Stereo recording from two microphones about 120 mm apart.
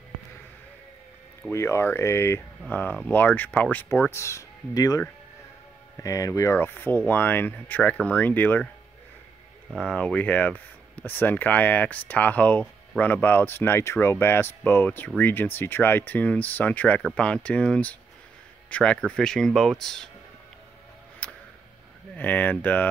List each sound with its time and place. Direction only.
1.5 s speech: 25° left (ahead or behind)
9.7 s speech: 5° left (ahead or behind)
21.2 s a sound: 10° left (ahead or behind)
22.1 s speech: 15° left (ahead or behind)